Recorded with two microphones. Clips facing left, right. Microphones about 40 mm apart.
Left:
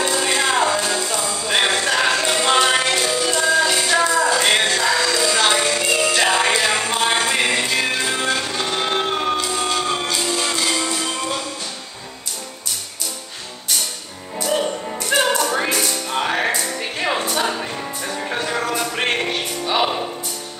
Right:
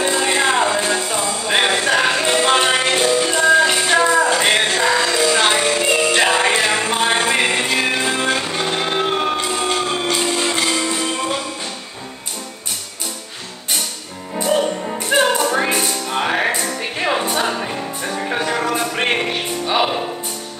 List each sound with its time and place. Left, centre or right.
0.0 s music: centre
1.5 s music: centre
6.5 s music: right
14.3 s music: centre